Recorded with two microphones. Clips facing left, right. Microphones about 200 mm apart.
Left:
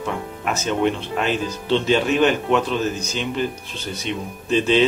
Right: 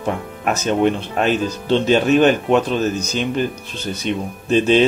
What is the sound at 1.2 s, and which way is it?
Speech, 45° right (ahead or behind).